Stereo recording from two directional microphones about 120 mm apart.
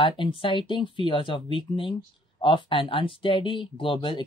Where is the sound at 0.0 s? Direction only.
45° left (ahead or behind).